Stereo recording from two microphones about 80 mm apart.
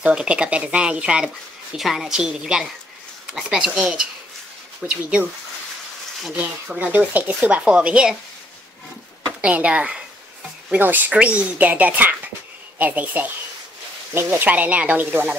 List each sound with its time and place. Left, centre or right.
0.0 s speech: centre
6.8 s speech: right
9.4 s speech: centre